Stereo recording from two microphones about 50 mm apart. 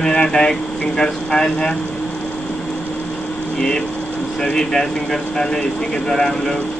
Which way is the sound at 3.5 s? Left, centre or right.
Centre.